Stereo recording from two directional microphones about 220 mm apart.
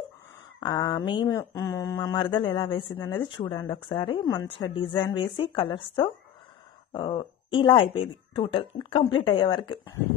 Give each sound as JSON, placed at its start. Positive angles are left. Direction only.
{"t": 0.6, "sound": "speech", "side_deg": 20}